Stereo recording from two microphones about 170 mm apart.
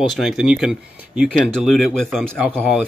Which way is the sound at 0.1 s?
Centre (ahead or behind).